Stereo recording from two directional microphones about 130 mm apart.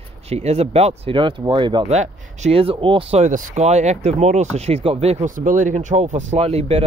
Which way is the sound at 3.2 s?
70° right (ahead or behind).